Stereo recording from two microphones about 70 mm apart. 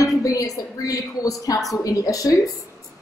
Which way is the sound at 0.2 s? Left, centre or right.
Left.